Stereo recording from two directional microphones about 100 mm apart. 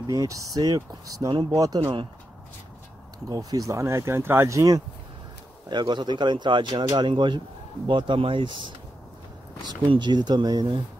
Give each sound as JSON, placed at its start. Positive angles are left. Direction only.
{"t": 0.0, "sound": "speech", "side_deg": -35}
{"t": 3.3, "sound": "speech", "side_deg": -35}
{"t": 5.7, "sound": "speech", "side_deg": -50}
{"t": 9.8, "sound": "speech", "side_deg": -50}